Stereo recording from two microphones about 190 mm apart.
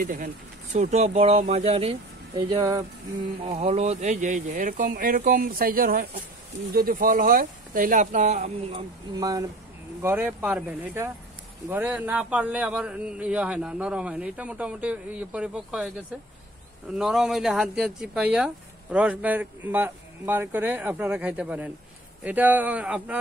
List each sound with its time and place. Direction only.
0.0 s speech: 45° right (ahead or behind)
0.7 s speech: 35° right (ahead or behind); by 15.9 s 5° right (ahead or behind)
16.9 s speech: centre (ahead or behind)